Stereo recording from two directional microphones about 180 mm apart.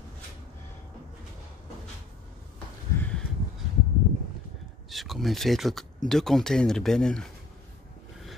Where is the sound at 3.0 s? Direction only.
5° left (ahead or behind).